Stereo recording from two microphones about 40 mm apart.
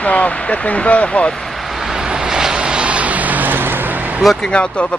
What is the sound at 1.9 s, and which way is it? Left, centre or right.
Vehicle, centre.